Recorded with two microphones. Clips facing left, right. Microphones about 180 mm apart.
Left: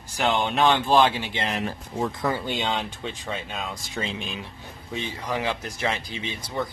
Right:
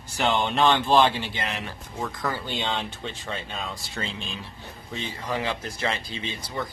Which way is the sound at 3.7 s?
20° left (ahead or behind).